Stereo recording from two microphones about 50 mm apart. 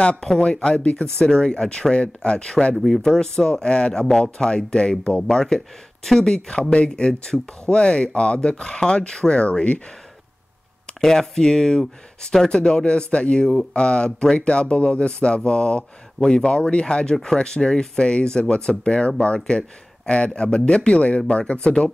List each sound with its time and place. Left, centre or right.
0.0 s speech: centre
2.7 s speech: centre
3.0 s speech: centre
10.9 s speech: centre